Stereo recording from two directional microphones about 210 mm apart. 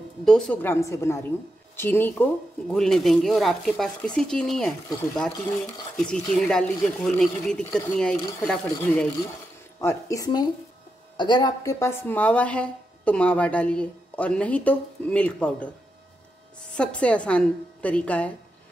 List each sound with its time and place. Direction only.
0.2 s a woman's voice: 5° left (ahead or behind)
5.9 s a woman's voice: 5° left (ahead or behind)
16.7 s speech: 5° left (ahead or behind)